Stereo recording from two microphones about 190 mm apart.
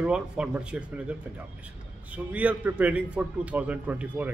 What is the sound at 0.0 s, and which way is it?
A man's voice, 5° right (ahead or behind).